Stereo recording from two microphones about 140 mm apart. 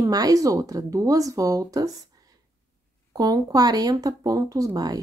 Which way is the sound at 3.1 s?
25° right (ahead or behind).